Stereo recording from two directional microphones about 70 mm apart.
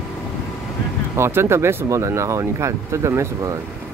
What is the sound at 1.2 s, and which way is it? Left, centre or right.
Speech, right.